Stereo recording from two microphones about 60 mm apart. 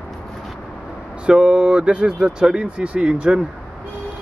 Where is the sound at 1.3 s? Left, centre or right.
Centre.